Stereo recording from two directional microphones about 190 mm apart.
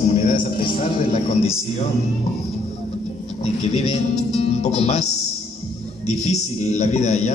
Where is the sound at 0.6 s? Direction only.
30° left (ahead or behind).